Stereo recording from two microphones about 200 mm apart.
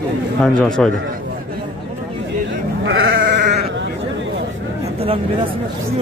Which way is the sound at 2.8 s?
65° right (ahead or behind).